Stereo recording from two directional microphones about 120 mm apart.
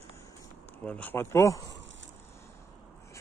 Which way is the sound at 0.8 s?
10° left (ahead or behind).